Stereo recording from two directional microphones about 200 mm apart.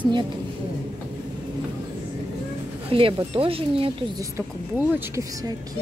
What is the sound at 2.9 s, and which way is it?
Speech, 25° right (ahead or behind).